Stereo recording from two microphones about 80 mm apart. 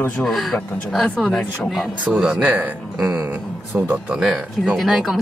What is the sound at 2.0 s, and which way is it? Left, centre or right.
A man's voice, centre.